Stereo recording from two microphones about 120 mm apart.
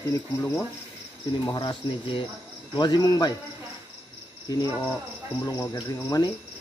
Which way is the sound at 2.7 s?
35° left (ahead or behind).